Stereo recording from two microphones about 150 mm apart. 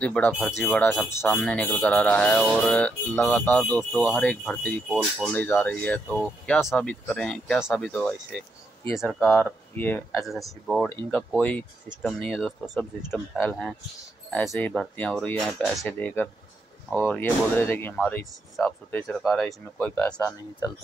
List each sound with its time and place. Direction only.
0.0 s speech: 10° left (ahead or behind)
4.8 s speech: 5° right (ahead or behind)
5.3 s speech: 10° left (ahead or behind)
10.1 s speech: centre (ahead or behind)
13.4 s speech: 10° left (ahead or behind)
14.7 s speech: 5° left (ahead or behind)
17.1 s speech: 15° left (ahead or behind)
20.2 s speech: 25° left (ahead or behind)